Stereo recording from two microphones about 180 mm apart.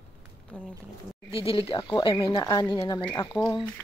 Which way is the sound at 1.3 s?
30° left (ahead or behind).